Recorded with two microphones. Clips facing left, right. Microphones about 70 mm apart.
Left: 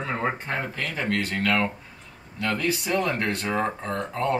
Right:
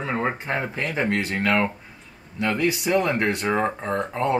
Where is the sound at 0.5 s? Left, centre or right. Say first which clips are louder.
Right 4 dB; right.